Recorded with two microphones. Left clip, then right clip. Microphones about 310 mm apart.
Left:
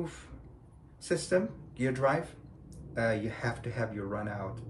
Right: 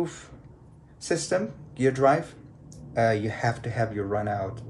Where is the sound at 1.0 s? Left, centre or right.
Centre.